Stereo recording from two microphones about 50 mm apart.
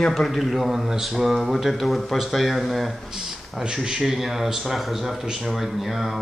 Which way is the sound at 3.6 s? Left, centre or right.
Centre.